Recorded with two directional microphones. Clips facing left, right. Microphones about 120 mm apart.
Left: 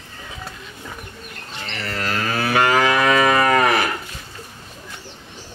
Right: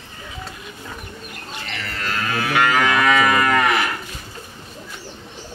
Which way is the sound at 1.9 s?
35° left (ahead or behind).